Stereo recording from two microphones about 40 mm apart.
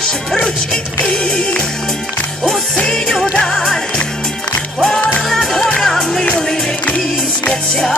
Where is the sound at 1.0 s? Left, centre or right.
Left.